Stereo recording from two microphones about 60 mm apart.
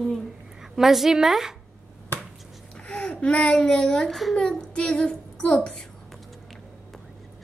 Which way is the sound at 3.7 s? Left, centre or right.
Centre.